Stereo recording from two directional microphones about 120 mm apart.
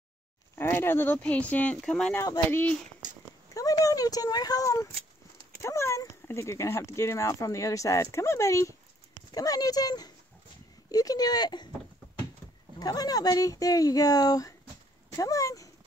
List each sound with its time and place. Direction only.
0.6 s speech: 20° left (ahead or behind)
2.1 s speech: 30° left (ahead or behind)
3.5 s speech: 30° left (ahead or behind)
12.7 s speech: 30° left (ahead or behind)